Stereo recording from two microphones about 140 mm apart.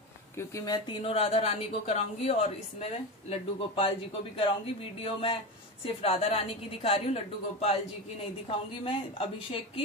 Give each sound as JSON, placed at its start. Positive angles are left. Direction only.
{"t": 0.4, "sound": "speech", "side_deg": 25}
{"t": 0.8, "sound": "speech", "side_deg": 40}
{"t": 5.0, "sound": "a woman's voice", "side_deg": 40}